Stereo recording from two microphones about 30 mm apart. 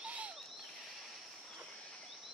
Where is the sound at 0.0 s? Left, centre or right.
Right.